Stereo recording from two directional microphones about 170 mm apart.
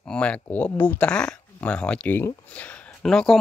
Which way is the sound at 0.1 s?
5° left (ahead or behind).